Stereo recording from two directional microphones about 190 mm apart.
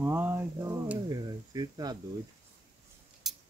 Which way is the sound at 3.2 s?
Centre (ahead or behind).